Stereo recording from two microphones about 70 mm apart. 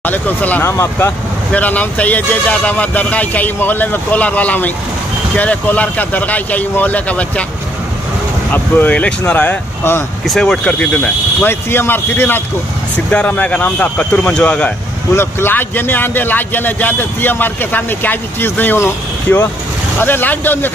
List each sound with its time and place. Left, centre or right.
0.0 s speech: left
0.7 s a man's voice: left
1.5 s speech: left
8.5 s speech: left
10.2 s speech: centre
11.4 s a man's voice: left; by 14.7 s centre
15.1 s speech: left
20.0 s speech: left